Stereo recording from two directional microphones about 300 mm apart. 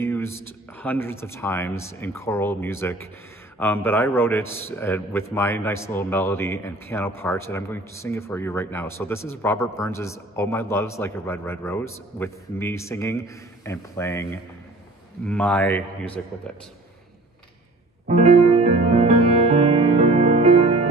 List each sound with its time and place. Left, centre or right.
0.0 s a man's voice: centre
18.0 s music: right